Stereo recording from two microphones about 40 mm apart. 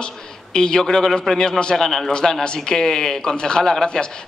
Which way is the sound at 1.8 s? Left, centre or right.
Centre.